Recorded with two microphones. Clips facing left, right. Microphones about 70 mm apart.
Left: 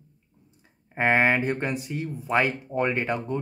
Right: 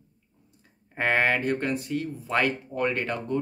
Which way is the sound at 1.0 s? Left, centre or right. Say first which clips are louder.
Left 2 dB; centre.